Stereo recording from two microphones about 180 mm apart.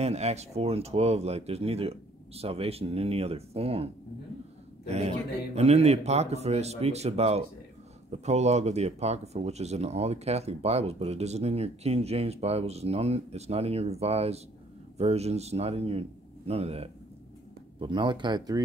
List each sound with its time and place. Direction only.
0.0 s a man's voice: 35° right (ahead or behind)